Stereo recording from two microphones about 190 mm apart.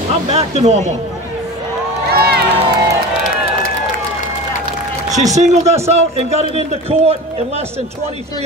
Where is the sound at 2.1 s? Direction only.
55° right (ahead or behind).